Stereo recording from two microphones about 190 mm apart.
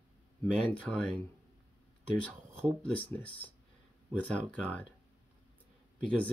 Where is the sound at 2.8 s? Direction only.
5° left (ahead or behind).